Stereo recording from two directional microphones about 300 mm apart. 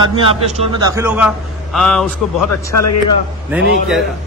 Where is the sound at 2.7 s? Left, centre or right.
Left.